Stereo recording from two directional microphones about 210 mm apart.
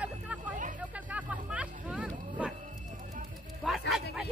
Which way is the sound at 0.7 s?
5° right (ahead or behind).